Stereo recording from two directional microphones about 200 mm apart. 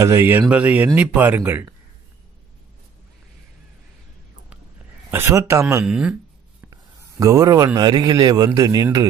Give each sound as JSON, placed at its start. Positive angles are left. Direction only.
{"t": 0.0, "sound": "speech", "side_deg": -15}
{"t": 5.1, "sound": "speech", "side_deg": -15}
{"t": 5.9, "sound": "speech", "side_deg": -5}
{"t": 6.7, "sound": "a man's voice", "side_deg": -15}